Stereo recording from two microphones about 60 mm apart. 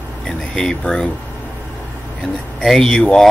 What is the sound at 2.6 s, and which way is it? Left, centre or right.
Speech, centre.